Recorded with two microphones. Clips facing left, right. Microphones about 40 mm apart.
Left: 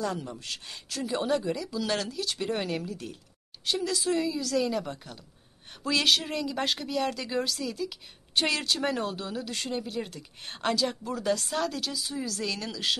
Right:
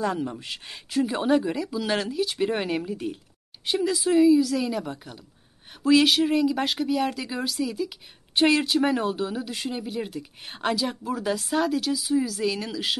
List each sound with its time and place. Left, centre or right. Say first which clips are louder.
0.0 s speech: right 5 dB; right; by 13.0 s centre